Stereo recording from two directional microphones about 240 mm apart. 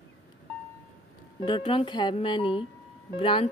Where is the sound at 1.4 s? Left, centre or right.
Left.